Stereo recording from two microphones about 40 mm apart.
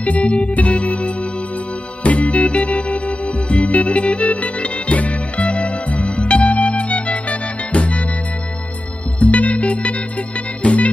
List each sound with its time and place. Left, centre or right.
0.0 s music: left
9.2 s music: left